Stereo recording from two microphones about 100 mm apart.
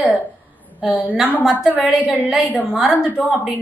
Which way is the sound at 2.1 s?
15° right (ahead or behind).